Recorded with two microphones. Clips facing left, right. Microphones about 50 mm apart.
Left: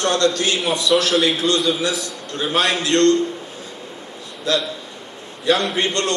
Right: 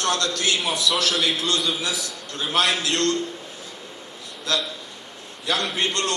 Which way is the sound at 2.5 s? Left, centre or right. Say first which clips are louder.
Left 4 dB; left.